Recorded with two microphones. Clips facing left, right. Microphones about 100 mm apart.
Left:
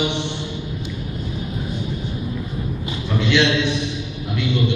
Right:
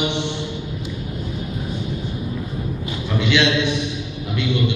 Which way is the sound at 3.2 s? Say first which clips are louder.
Even; 15° right (ahead or behind).